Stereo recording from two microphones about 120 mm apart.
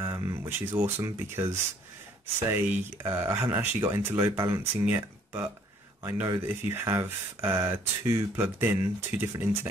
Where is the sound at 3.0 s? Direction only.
25° right (ahead or behind).